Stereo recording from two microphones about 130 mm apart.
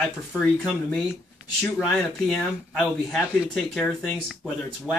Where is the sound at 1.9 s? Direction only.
5° left (ahead or behind).